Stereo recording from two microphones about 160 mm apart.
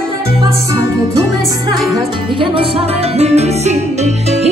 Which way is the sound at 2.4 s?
35° right (ahead or behind).